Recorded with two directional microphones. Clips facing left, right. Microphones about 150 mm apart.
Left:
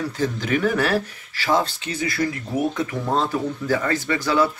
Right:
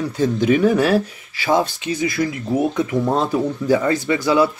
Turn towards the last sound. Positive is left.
turn(degrees=-15)  # may be behind; listen again after turning